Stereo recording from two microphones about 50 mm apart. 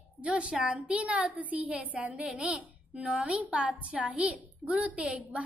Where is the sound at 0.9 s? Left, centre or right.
Right.